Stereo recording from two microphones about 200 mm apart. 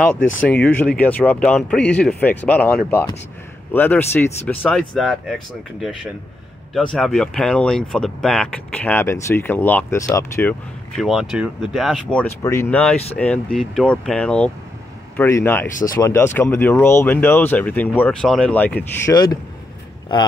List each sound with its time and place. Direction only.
0.0 s speech: 5° left (ahead or behind)
6.7 s speech: 5° left (ahead or behind)
11.0 s speech: centre (ahead or behind)
15.7 s speech: 45° left (ahead or behind)
16.0 s speech: 10° left (ahead or behind)